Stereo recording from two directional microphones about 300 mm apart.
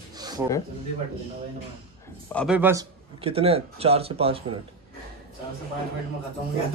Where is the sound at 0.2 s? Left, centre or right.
Centre.